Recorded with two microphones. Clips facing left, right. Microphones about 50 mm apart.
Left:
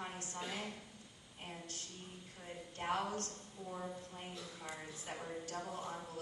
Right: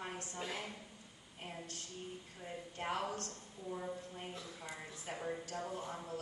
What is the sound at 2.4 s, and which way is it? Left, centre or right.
A man's voice, centre.